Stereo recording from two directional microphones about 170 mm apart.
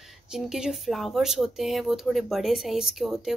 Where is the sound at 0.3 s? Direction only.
5° right (ahead or behind).